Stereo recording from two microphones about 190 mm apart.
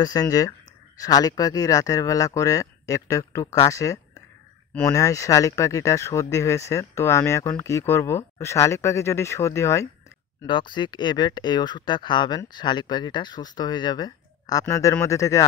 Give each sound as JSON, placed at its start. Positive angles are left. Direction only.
{"t": 0.0, "sound": "speech", "side_deg": 20}